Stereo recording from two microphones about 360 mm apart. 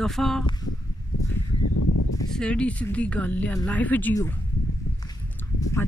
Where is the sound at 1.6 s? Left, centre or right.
Left.